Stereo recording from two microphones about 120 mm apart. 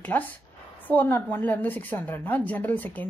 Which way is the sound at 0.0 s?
15° left (ahead or behind).